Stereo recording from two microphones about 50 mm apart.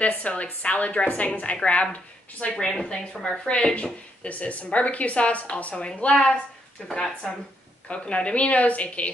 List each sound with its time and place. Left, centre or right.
0.0 s a woman's voice: left
2.5 s a woman's voice: centre; by 9.1 s left